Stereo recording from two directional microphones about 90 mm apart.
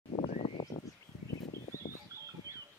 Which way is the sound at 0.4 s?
75° left (ahead or behind).